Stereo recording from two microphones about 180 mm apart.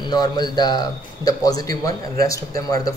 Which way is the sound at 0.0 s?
25° left (ahead or behind).